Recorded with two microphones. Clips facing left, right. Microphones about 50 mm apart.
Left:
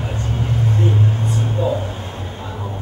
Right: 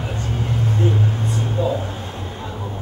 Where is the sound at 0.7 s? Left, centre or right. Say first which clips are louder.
Left 1 dB; centre.